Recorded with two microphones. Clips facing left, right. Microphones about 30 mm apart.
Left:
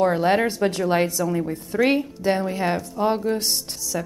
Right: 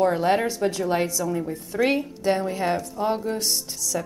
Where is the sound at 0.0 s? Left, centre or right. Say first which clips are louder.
Left 2 dB; centre.